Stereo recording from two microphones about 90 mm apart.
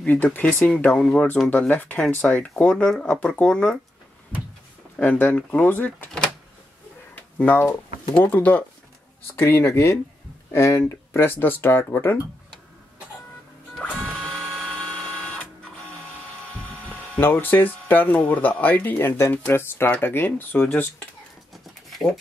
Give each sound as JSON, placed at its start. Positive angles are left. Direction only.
{"t": 0.0, "sound": "speech", "side_deg": 20}
{"t": 1.7, "sound": "speech", "side_deg": 20}
{"t": 4.9, "sound": "speech", "side_deg": 15}
{"t": 7.2, "sound": "speech", "side_deg": 20}
{"t": 14.2, "sound": "dental drill", "side_deg": 5}
{"t": 16.9, "sound": "speech", "side_deg": 20}
{"t": 21.9, "sound": "a sound", "side_deg": 0}